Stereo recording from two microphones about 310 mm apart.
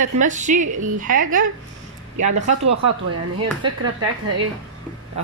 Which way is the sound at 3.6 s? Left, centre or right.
Centre.